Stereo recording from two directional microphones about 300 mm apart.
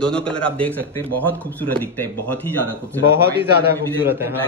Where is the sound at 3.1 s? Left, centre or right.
Right.